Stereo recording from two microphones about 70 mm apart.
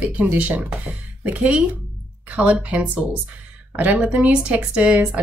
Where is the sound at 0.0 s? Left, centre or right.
Right.